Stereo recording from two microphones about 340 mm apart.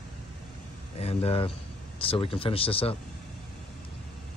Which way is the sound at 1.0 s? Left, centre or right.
Centre.